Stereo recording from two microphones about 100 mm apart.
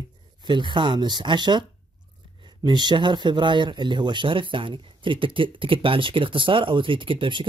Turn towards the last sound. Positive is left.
turn(degrees=-60)  # may be behind; listen again after turning